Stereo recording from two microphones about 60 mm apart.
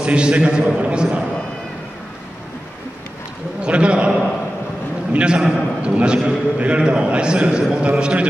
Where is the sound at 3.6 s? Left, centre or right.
Centre.